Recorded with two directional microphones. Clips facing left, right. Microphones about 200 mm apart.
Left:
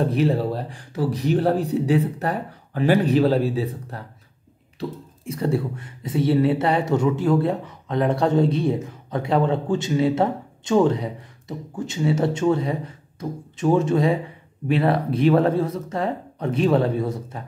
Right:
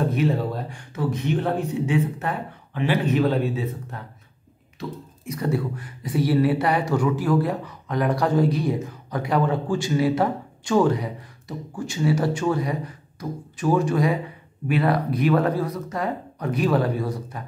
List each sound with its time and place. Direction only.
0.0 s speech: 35° left (ahead or behind)